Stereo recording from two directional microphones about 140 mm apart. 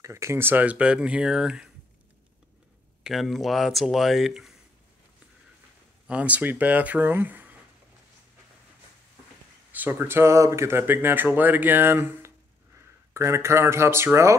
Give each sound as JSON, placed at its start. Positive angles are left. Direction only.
{"t": 0.0, "sound": "speech", "side_deg": -20}
{"t": 3.0, "sound": "speech", "side_deg": 0}
{"t": 6.0, "sound": "speech", "side_deg": -10}
{"t": 9.8, "sound": "speech", "side_deg": -15}